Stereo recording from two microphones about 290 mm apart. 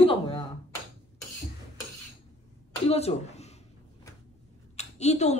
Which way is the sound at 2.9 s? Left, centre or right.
Left.